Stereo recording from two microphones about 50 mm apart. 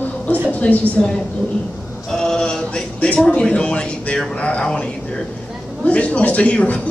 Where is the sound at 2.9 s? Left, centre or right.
Left.